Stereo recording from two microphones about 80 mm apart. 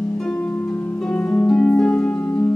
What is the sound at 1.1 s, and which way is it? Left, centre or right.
Harp, left.